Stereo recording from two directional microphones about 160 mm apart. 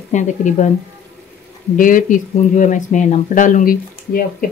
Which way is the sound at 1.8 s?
55° left (ahead or behind).